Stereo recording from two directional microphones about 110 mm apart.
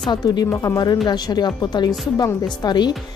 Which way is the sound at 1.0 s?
40° left (ahead or behind).